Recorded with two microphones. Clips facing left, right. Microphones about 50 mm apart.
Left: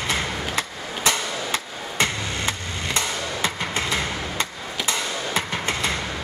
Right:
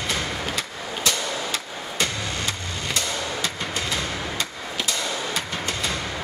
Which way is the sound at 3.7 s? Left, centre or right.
Left.